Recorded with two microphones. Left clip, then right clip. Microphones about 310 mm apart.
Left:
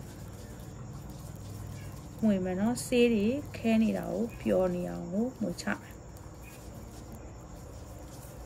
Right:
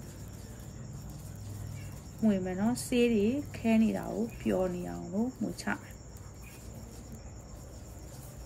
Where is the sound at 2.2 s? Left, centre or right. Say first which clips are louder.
Left 1 dB; centre.